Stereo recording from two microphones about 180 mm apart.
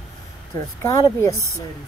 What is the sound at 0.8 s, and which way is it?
Speech, 20° left (ahead or behind).